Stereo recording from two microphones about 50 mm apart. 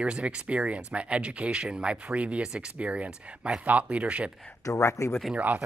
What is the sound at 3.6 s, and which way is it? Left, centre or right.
Speech, right.